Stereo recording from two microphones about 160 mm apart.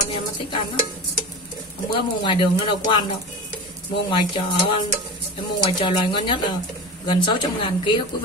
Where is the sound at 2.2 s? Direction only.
30° left (ahead or behind).